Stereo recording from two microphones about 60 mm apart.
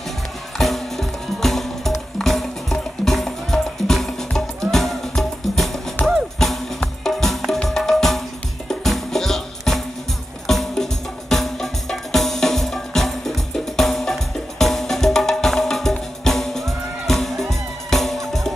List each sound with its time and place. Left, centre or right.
0.6 s music: centre
6.0 s music: left
6.4 s music: centre